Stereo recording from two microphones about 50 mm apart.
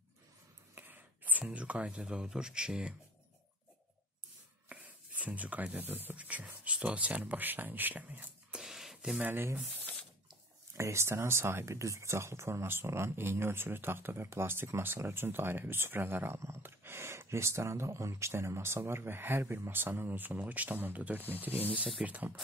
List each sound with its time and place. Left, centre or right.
0.7 s a sound: right
1.5 s speech: right
4.6 s speech: right
6.2 s speech: right
8.6 s a sound: centre
9.3 s speech: right
9.9 s spray: left
10.8 s speech: right
16.3 s speech: right
16.6 s speech: right